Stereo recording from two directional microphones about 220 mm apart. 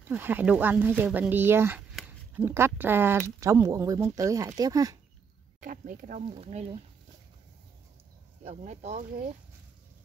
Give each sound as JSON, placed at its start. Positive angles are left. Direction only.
{"t": 0.1, "sound": "speech", "side_deg": -10}
{"t": 5.6, "sound": "speech", "side_deg": -35}
{"t": 8.5, "sound": "speech", "side_deg": -30}